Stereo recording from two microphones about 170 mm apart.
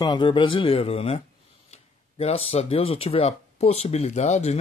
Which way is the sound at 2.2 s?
35° left (ahead or behind).